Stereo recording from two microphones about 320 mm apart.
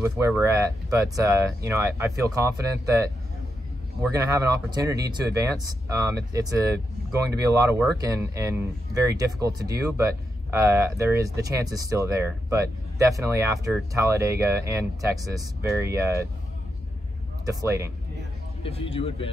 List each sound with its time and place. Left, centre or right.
0.0 s speech: centre
17.5 s speech: centre
18.6 s speech: centre